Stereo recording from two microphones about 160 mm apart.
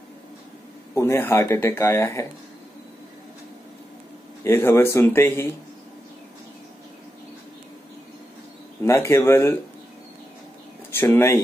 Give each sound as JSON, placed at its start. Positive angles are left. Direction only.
{"t": 0.9, "sound": "speech", "side_deg": 15}
{"t": 4.5, "sound": "speech", "side_deg": 15}
{"t": 8.8, "sound": "speech", "side_deg": 20}
{"t": 10.9, "sound": "speech", "side_deg": 15}